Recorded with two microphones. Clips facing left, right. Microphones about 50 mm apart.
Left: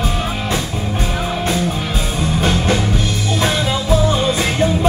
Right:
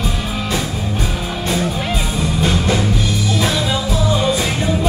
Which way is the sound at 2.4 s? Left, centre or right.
Left.